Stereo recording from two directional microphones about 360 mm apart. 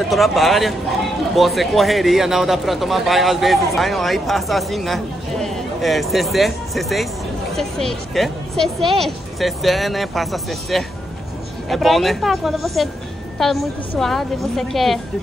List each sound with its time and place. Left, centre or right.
0.1 s speech: centre